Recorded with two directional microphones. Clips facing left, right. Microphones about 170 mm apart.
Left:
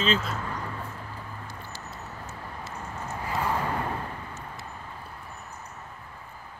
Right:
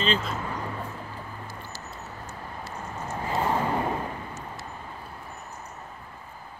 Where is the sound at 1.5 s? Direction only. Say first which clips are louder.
Right 1 dB; 5° right (ahead or behind).